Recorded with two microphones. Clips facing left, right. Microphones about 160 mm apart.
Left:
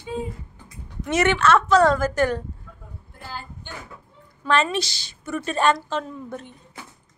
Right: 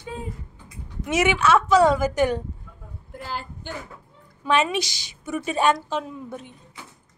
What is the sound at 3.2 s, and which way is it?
Speech, 90° right.